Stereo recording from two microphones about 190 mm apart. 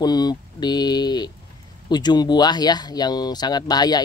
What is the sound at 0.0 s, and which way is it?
Speech, 20° left (ahead or behind).